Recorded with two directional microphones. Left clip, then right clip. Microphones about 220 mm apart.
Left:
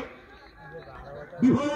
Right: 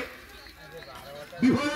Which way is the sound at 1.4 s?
35° left (ahead or behind).